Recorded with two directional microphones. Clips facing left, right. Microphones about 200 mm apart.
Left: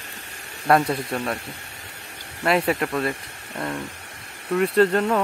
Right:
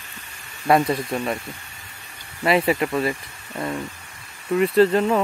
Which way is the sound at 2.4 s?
Centre (ahead or behind).